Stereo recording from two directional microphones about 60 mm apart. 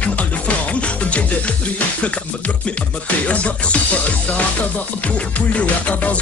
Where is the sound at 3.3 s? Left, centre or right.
Left.